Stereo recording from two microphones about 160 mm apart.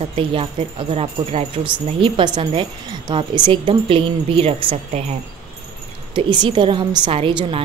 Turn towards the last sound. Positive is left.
turn(degrees=-35)  # may be behind; listen again after turning